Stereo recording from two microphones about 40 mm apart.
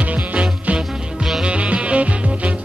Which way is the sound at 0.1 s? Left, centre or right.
Right.